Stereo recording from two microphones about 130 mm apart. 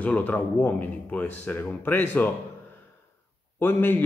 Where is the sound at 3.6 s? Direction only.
15° left (ahead or behind).